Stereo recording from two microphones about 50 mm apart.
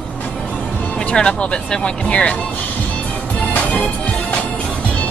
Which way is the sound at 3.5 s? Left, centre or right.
Left.